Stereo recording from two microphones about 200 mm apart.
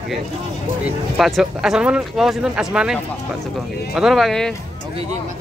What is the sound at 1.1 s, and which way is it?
Speech, centre (ahead or behind).